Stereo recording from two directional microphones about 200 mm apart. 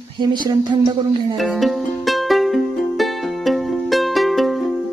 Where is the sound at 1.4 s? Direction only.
Centre (ahead or behind).